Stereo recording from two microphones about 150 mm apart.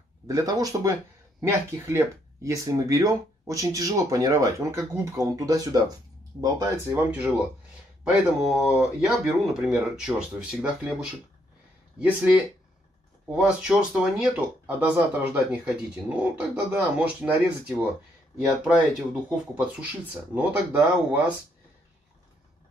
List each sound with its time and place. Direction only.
0.3 s speech: 25° right (ahead or behind)
8.0 s speech: centre (ahead or behind)
12.0 s speech: 5° right (ahead or behind)